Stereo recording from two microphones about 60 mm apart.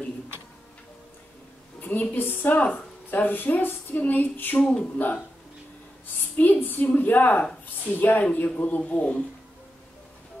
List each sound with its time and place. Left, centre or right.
1.8 s a sound: left
2.1 s a woman's voice: left
4.6 s speech: centre
4.9 s a woman's voice: left
6.3 s a woman's voice: left